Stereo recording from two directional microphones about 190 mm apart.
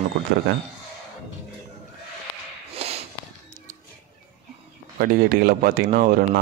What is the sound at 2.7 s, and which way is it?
Snort, 30° right (ahead or behind).